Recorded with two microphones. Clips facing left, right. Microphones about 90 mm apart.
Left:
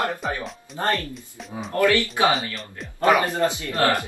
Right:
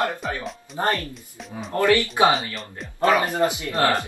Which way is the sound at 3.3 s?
15° right (ahead or behind).